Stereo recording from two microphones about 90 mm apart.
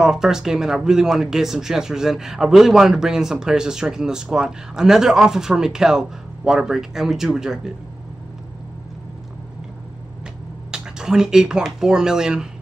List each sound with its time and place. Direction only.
0.0 s speech: 5° right (ahead or behind)
10.7 s speech: 5° right (ahead or behind)